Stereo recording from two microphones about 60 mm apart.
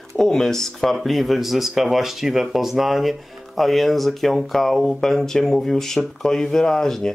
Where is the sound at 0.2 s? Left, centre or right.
Centre.